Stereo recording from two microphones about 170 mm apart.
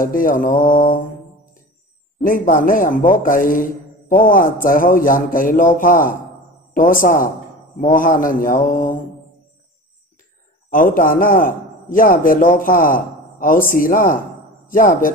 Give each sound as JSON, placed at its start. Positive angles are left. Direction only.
{"t": 0.0, "sound": "mantra", "side_deg": 55}
{"t": 2.2, "sound": "a man's voice", "side_deg": 55}
{"t": 10.7, "sound": "a man's voice", "side_deg": 55}